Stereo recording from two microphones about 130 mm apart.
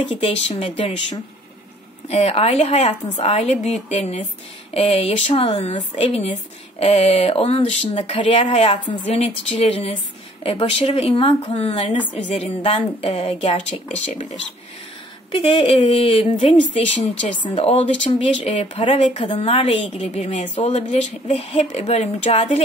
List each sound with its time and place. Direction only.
0.0 s speech: 50° left (ahead or behind)
2.0 s a woman's voice: 50° left (ahead or behind)
15.3 s a woman's voice: 45° left (ahead or behind)